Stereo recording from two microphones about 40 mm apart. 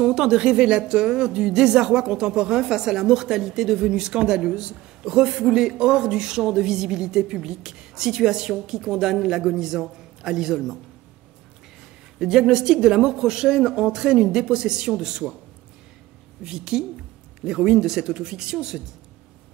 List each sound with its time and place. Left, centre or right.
0.0 s speech: centre
12.2 s speech: centre
16.4 s speech: centre